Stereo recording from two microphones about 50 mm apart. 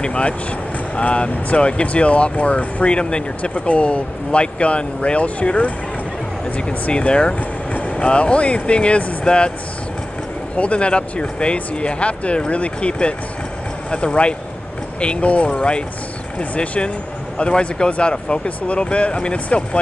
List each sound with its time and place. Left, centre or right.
0.0 s speech: left
6.9 s speech: left
7.3 s speech: left
10.5 s speech: left